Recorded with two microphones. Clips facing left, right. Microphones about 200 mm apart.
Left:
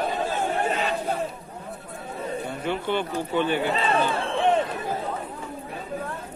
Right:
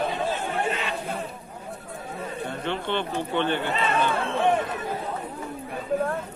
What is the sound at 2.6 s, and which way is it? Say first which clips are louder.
Speech: left 2 dB; 10° left (ahead or behind).